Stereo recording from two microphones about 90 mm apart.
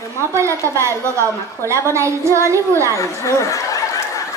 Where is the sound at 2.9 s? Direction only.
35° left (ahead or behind).